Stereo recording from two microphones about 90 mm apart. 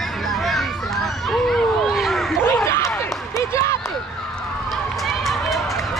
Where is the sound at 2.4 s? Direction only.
30° left (ahead or behind).